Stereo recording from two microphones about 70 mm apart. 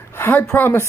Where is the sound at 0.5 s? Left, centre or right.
Left.